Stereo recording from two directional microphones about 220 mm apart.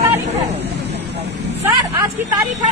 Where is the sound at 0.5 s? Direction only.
30° right (ahead or behind).